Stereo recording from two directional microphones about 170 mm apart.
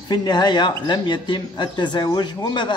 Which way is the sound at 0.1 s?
25° left (ahead or behind).